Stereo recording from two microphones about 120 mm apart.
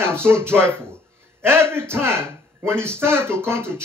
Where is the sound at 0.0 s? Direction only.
20° right (ahead or behind).